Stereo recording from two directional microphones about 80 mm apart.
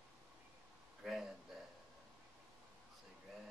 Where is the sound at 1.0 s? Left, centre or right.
Centre.